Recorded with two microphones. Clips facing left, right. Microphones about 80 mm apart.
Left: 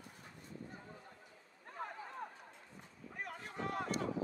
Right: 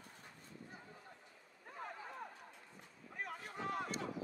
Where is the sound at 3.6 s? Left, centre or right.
Left.